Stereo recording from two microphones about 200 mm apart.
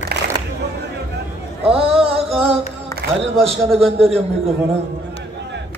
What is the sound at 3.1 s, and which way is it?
A man's voice, 30° right (ahead or behind).